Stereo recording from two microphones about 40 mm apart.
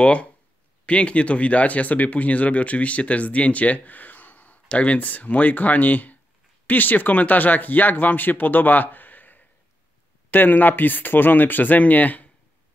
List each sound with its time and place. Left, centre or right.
0.0 s speech: left